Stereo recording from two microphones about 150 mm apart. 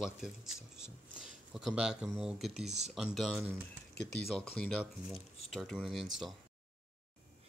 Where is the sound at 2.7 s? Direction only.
50° right (ahead or behind).